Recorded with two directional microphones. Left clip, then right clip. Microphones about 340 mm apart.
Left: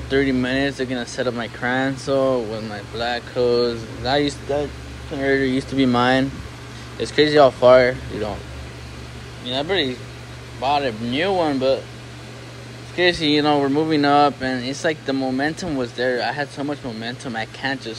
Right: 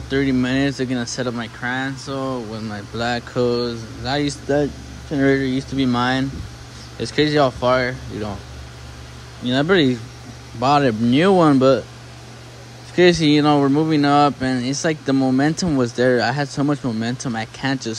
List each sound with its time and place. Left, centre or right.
0.1 s speech: centre
9.5 s speech: right
12.9 s speech: right